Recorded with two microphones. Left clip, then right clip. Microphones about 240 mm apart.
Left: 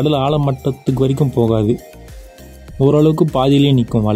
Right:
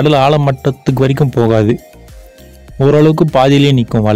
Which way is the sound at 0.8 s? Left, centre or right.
Right.